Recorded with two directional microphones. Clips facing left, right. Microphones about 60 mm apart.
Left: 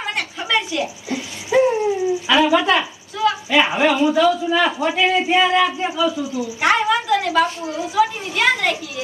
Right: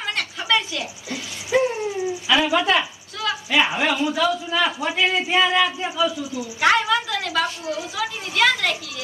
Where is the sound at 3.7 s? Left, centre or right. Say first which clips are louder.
Left 6 dB; centre.